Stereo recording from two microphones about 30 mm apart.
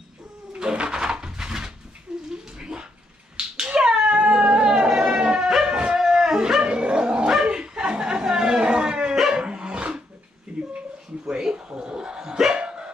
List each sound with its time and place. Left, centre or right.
0.6 s a sound: right
3.3 s cat: right
4.6 s music: right
5.1 s dog: right
5.7 s shofar: right
5.9 s shofar: centre
6.6 s a sound: right
7.4 s dog: right
10.5 s a sound: right
12.5 s dog: right